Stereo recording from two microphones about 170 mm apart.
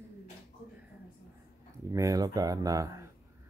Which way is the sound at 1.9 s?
20° right (ahead or behind).